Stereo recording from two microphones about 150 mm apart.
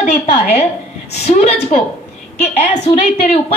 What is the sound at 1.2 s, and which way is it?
A woman's voice, 50° left (ahead or behind).